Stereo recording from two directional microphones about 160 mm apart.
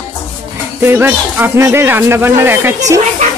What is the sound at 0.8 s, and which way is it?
A woman's voice, 10° right (ahead or behind).